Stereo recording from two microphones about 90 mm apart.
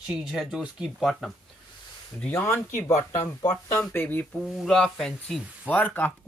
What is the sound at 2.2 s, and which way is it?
Speech, 20° left (ahead or behind).